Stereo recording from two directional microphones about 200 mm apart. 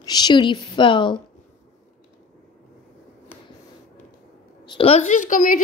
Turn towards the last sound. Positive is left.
turn(degrees=40)  # may be behind; listen again after turning